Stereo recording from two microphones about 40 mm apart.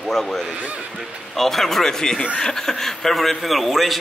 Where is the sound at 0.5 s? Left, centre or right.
Right.